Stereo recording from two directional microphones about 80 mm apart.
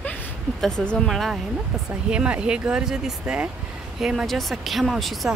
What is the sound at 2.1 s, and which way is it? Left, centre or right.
A woman's voice, centre.